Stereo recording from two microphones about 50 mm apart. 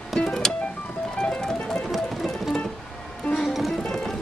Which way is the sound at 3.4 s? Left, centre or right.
Centre.